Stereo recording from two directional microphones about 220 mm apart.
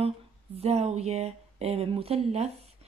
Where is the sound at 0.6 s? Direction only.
30° right (ahead or behind).